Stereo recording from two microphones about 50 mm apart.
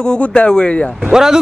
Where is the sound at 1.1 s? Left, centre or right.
Centre.